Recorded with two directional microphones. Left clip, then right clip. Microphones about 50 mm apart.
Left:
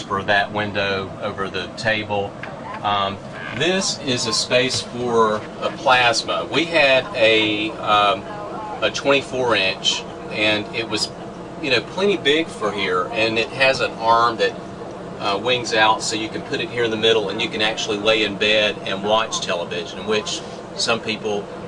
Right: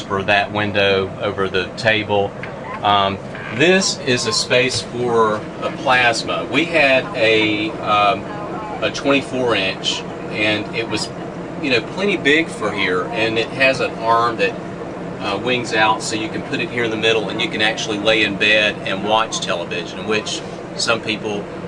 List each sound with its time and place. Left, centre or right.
0.1 s a man's voice: right; by 12.2 s centre
12.2 s speech: centre